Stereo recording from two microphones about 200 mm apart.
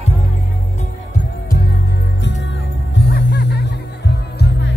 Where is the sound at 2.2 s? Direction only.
60° left (ahead or behind).